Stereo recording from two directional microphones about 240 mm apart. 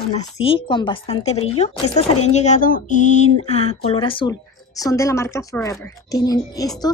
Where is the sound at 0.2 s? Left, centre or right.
Left.